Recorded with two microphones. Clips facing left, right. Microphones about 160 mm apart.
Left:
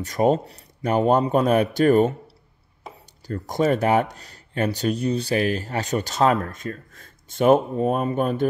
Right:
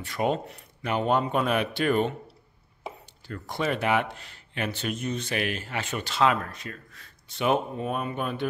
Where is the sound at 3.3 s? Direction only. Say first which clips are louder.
Left 8 dB; 40° left (ahead or behind).